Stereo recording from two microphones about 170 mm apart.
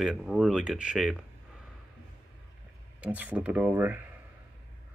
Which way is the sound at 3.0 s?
10° right (ahead or behind).